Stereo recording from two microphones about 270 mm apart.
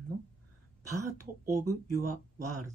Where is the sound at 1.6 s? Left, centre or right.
Right.